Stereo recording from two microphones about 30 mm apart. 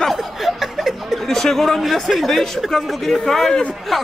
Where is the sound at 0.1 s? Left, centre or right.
Centre.